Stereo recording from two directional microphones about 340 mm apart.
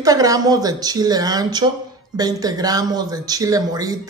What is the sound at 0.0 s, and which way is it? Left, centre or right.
Speech, centre.